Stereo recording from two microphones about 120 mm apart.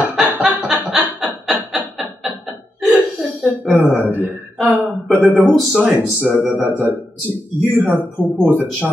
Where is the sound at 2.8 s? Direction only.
15° right (ahead or behind).